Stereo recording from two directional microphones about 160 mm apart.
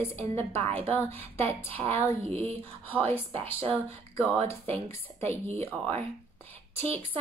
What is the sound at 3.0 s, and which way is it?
A woman's voice, 10° left (ahead or behind).